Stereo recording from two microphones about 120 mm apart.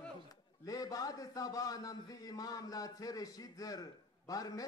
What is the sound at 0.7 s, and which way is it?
A man's voice, 30° left (ahead or behind).